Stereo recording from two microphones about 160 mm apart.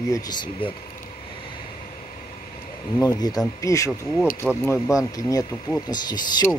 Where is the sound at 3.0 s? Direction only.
25° left (ahead or behind).